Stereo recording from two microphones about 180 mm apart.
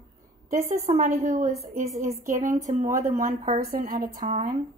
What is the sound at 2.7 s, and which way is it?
Speech, 45° right (ahead or behind).